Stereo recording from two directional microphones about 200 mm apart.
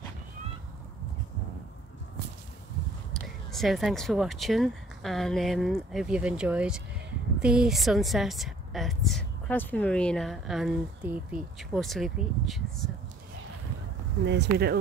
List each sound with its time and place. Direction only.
3.1 s a woman's voice: centre (ahead or behind)
14.2 s speech: 60° right (ahead or behind)